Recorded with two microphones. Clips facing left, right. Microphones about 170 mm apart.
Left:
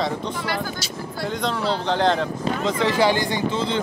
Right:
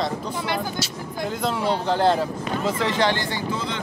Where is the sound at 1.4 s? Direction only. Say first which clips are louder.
Right 1 dB; 10° right (ahead or behind); by 3.4 s 10° left (ahead or behind).